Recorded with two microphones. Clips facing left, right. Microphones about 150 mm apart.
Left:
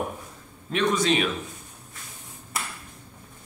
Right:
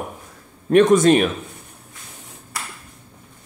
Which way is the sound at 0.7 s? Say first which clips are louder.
Right 11 dB; 50° right (ahead or behind).